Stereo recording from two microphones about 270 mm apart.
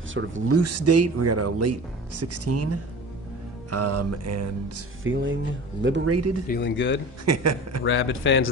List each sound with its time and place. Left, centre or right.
0.1 s speech: right
0.6 s speech: right
5.0 s speech: right
6.0 s speech: right
6.4 s speech: left
7.2 s a man's voice: right
7.8 s speech: left